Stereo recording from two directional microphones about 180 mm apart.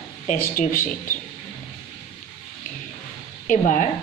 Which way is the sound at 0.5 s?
50° left (ahead or behind).